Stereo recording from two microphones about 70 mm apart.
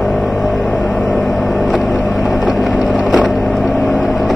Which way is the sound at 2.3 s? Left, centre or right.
Centre.